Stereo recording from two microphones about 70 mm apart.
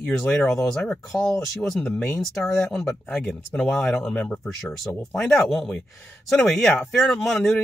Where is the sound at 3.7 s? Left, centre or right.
Centre.